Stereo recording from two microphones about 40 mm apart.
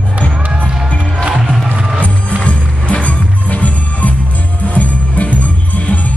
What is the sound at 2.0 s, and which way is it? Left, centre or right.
Music, left.